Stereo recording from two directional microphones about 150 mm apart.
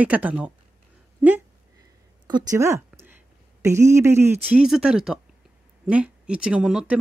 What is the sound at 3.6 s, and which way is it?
A woman's voice, 20° right (ahead or behind).